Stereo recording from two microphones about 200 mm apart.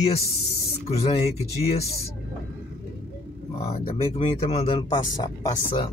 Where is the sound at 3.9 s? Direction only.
30° left (ahead or behind).